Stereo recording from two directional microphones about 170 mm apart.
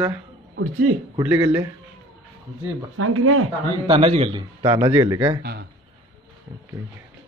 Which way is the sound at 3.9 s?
35° right (ahead or behind).